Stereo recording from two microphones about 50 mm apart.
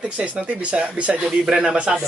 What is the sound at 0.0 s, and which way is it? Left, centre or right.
Speech, right.